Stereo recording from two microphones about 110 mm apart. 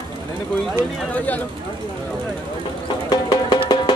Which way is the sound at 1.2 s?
15° left (ahead or behind).